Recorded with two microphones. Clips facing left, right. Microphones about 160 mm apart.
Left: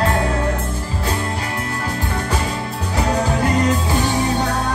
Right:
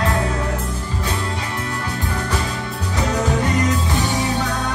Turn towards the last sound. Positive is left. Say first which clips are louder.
# left 2 dB
turn(degrees=35)  # may be behind; listen again after turning